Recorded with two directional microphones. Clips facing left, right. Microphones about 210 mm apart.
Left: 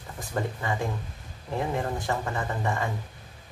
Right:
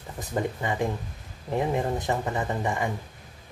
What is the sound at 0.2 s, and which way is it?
Speech, 20° right (ahead or behind).